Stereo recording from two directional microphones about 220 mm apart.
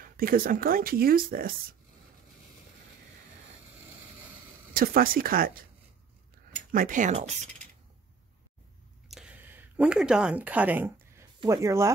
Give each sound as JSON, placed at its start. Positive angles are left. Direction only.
{"t": 0.0, "sound": "speech", "side_deg": -40}
{"t": 4.7, "sound": "speech", "side_deg": -40}
{"t": 6.7, "sound": "speech", "side_deg": -35}
{"t": 9.1, "sound": "a sound", "side_deg": -5}
{"t": 11.3, "sound": "speech", "side_deg": -15}